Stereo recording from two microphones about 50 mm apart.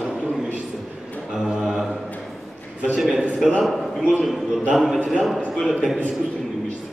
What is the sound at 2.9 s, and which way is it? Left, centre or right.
Speech, centre.